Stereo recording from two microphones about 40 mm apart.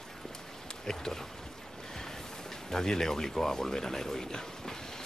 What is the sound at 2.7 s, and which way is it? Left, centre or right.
Speech, centre.